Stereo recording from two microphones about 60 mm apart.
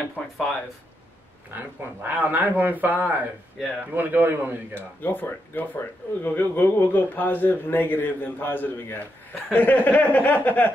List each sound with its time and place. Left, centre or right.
1.5 s a man's voice: right
4.7 s speech: left